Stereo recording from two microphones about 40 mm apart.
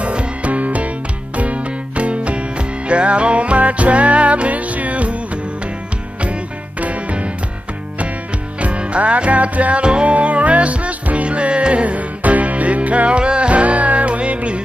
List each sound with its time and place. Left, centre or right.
0.0 s music: right
6.8 s music: right
8.5 s music: right
9.8 s music: right
10.1 s music: right